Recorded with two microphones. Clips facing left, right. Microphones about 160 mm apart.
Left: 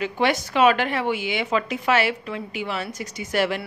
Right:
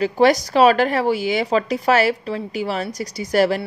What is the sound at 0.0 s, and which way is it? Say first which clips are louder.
A woman's voice: right 7 dB; 40° right (ahead or behind).